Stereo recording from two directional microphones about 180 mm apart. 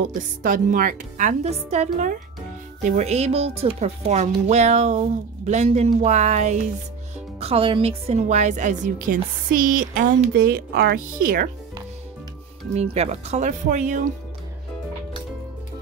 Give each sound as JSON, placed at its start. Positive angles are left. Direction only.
{"t": 0.1, "sound": "a woman's voice", "side_deg": -50}
{"t": 12.7, "sound": "speech", "side_deg": -35}